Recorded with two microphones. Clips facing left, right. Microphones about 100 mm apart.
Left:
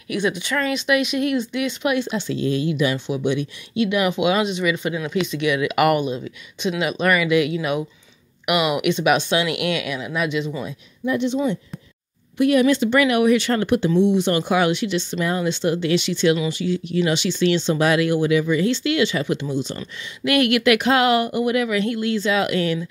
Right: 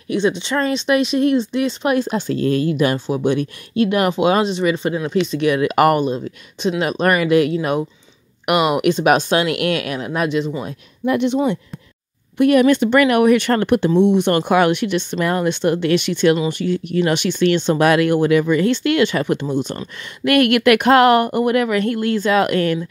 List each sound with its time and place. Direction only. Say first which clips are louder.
0.1 s speech: right 4 dB; 25° right (ahead or behind)
11.1 s speech: right 4 dB; 60° right (ahead or behind)
12.4 s speech: right 3 dB; 55° right (ahead or behind)